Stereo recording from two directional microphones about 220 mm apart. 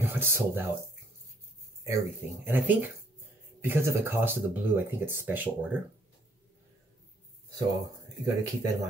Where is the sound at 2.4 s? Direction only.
10° right (ahead or behind).